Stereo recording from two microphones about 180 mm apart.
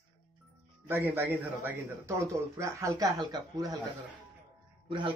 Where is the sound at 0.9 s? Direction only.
10° right (ahead or behind).